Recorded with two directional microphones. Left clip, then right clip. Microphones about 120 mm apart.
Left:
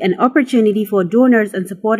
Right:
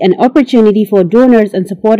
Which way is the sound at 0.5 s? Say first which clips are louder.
Right 6 dB; 45° right (ahead or behind).